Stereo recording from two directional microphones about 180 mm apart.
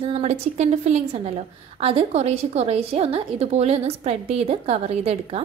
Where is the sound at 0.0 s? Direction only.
35° right (ahead or behind).